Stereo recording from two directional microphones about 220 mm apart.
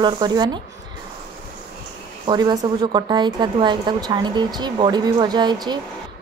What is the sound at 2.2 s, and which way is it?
Speech, 20° right (ahead or behind).